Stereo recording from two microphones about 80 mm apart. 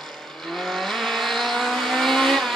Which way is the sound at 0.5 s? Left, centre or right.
Centre.